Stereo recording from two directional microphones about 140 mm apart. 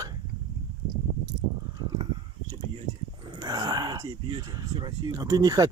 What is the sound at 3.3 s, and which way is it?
Speech, 30° right (ahead or behind).